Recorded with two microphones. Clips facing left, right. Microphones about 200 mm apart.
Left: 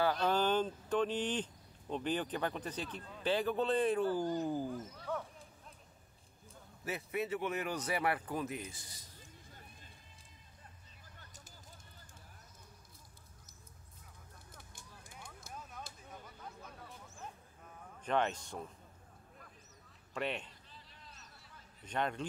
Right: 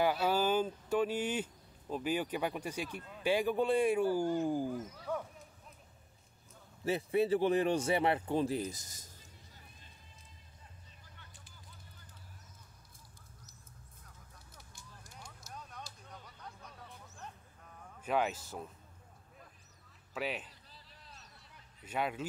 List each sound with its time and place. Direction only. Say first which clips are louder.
0.0 s speech: right 1 dB; 10° right (ahead or behind)
6.8 s a man's voice: right 7 dB; 30° right (ahead or behind)
11.1 s a sound: left 4 dB; 40° left (ahead or behind)
16.0 s a sound: left 1 dB; 5° left (ahead or behind)
18.0 s speech: right 1 dB; 5° right (ahead or behind)
20.2 s speech: even; 5° right (ahead or behind)
20.7 s vehicle: even; 35° right (ahead or behind)
21.8 s speech: right 1 dB; 5° right (ahead or behind)